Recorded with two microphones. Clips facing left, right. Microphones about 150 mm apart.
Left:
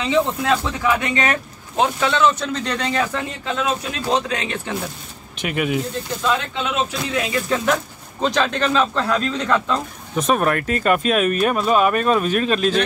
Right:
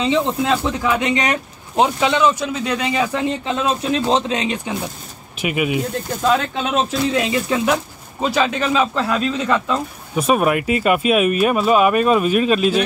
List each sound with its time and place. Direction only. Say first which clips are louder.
0.0 s speech: right 1 dB; 25° right (ahead or behind)
3.5 s speech: right 1 dB; 30° right (ahead or behind)
5.4 s speech: right 2 dB; 5° right (ahead or behind)
6.5 s speech: right 3 dB; 40° right (ahead or behind)
7.1 s speech: right 3 dB; 25° right (ahead or behind)
7.5 s speech: left 1 dB; 10° right (ahead or behind)